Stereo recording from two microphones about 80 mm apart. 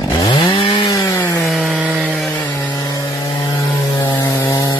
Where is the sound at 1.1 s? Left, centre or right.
Left.